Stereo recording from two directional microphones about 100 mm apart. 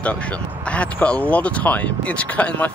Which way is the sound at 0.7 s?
10° left (ahead or behind).